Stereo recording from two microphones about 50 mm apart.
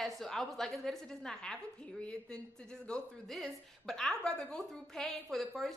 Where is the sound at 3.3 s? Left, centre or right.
Centre.